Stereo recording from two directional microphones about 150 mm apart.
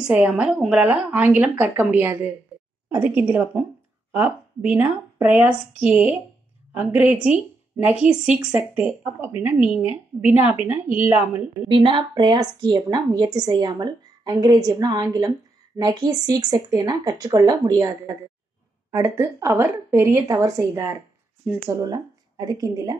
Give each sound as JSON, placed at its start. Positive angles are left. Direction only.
{"t": 0.0, "sound": "a woman's voice", "side_deg": -5}
{"t": 11.7, "sound": "a woman's voice", "side_deg": -35}